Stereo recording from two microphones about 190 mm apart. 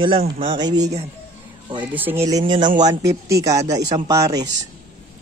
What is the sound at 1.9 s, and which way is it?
Speech, 10° right (ahead or behind).